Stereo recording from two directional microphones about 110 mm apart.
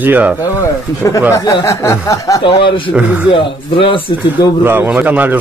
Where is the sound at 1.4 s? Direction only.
30° left (ahead or behind).